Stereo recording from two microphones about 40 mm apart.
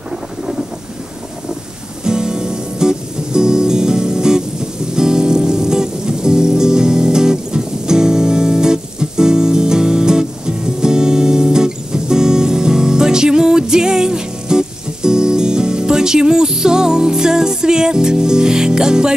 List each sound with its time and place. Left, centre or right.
2.0 s music: centre